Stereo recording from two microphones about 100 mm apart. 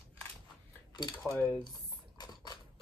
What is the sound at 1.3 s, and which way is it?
Speech, 25° left (ahead or behind).